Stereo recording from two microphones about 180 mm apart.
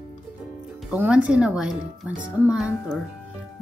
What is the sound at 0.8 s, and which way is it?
Speech, 5° right (ahead or behind).